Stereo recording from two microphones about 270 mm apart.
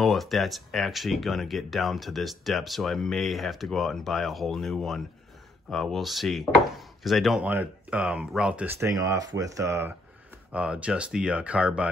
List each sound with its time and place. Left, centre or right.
0.0 s speech: centre